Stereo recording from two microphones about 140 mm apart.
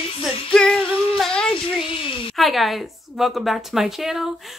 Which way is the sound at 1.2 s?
5° left (ahead or behind).